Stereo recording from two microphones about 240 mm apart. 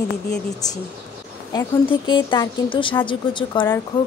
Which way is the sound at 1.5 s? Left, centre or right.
Centre.